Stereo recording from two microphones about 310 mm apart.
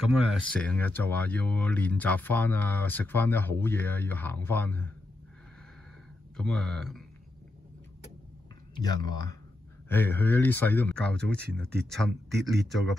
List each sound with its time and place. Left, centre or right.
0.1 s speech: centre
6.3 s speech: centre
8.7 s speech: centre